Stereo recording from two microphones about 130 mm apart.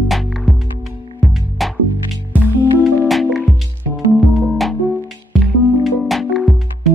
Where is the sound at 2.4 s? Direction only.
20° right (ahead or behind).